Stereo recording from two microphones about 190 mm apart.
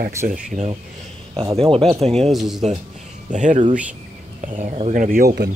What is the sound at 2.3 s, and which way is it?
Speech, centre (ahead or behind).